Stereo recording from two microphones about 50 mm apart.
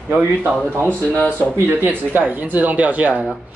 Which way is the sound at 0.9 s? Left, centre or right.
Left.